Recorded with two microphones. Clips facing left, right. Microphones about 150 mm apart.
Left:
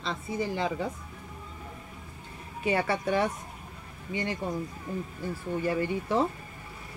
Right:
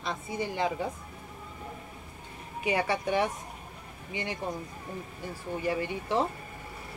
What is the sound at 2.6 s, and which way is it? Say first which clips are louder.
Speech: left 1 dB; 15° right (ahead or behind).